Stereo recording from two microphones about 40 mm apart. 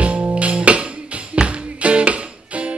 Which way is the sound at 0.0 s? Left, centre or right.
Right.